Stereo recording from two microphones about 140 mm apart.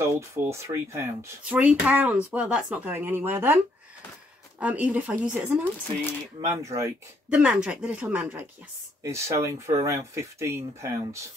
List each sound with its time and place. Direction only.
0.0 s speech: 20° right (ahead or behind)
1.4 s speech: 10° right (ahead or behind)
6.4 s speech: 20° right (ahead or behind)
7.3 s speech: 5° right (ahead or behind)